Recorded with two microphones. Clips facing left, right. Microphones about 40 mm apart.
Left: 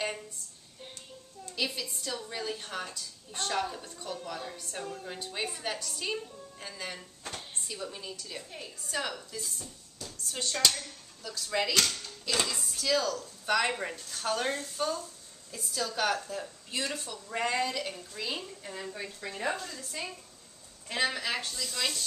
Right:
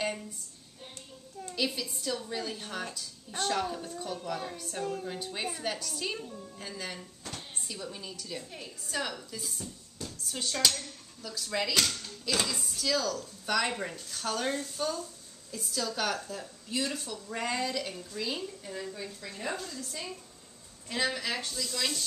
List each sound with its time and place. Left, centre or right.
1.5 s a woman's voice: centre; by 19.5 s left
20.9 s speech: centre
21.4 s a woman's voice: centre